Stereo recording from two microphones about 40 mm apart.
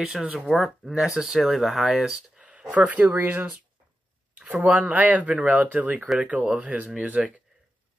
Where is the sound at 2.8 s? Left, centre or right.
Right.